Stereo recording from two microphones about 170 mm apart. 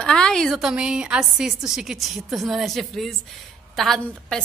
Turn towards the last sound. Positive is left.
turn(degrees=0)  # may be behind; listen again after turning